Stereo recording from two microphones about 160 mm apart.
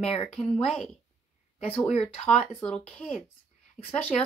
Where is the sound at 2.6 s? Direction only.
5° left (ahead or behind).